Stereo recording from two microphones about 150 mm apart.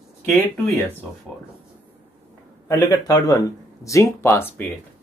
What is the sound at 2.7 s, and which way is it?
Speech, 25° left (ahead or behind).